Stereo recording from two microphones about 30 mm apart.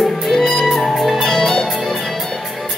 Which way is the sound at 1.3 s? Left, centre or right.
Centre.